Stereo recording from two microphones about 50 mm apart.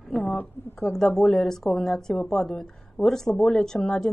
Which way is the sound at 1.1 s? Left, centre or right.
Centre.